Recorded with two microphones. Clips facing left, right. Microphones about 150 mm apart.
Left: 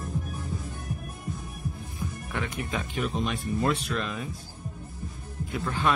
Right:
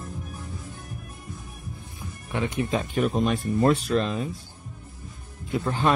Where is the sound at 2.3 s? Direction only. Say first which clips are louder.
Right 8 dB; 20° right (ahead or behind).